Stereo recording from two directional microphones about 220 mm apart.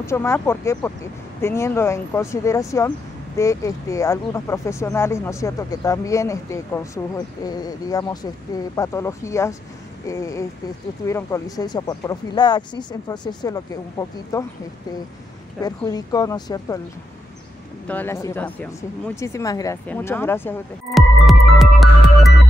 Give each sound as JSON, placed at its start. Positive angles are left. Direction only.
{"t": 0.0, "sound": "speech", "side_deg": 10}
{"t": 15.6, "sound": "speech", "side_deg": 15}
{"t": 17.8, "sound": "speech", "side_deg": 10}
{"t": 20.9, "sound": "music", "side_deg": 0}